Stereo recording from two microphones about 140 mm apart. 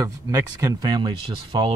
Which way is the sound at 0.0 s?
25° right (ahead or behind).